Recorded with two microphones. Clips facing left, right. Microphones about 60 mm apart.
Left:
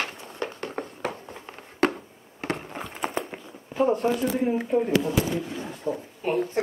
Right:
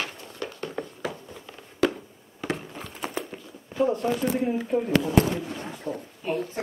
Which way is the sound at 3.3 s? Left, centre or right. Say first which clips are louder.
Left 2 dB; left.